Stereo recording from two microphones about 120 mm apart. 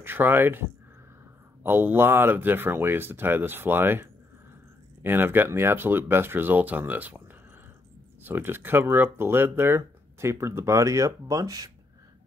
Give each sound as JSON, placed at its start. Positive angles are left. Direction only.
{"t": 0.0, "sound": "speech", "side_deg": -15}